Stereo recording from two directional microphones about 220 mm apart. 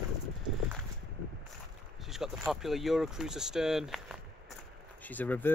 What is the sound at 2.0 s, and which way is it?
Speech, centre (ahead or behind).